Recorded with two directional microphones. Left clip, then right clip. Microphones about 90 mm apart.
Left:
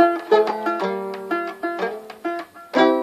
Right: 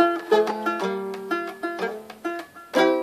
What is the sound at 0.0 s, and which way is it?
Music, 35° left (ahead or behind).